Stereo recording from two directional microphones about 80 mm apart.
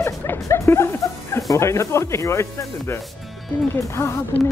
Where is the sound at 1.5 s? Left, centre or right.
Left.